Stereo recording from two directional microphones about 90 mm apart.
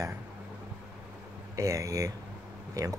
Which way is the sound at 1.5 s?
40° right (ahead or behind).